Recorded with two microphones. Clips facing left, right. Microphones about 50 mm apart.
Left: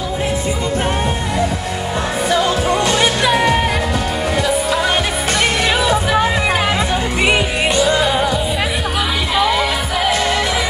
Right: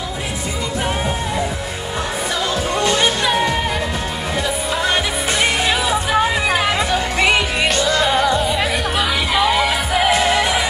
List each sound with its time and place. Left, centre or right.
2.9 s music: centre
5.8 s music: left
6.1 s music: centre
9.3 s music: centre